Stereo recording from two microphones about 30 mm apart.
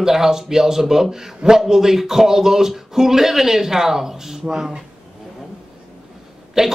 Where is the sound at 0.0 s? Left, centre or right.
Centre.